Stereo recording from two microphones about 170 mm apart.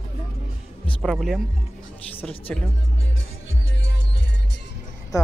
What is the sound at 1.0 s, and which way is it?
Speech, centre (ahead or behind).